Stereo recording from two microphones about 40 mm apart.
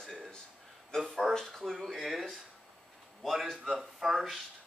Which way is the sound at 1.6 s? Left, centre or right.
Centre.